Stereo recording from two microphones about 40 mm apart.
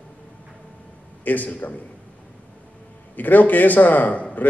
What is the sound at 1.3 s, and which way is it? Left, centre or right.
Speech, left.